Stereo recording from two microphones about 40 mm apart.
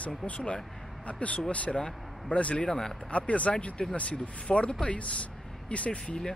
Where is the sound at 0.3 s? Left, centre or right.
Left.